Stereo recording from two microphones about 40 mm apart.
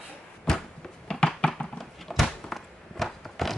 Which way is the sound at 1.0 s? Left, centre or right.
Centre.